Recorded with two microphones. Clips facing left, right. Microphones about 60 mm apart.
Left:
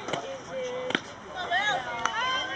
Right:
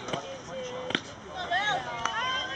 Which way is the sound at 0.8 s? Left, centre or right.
Centre.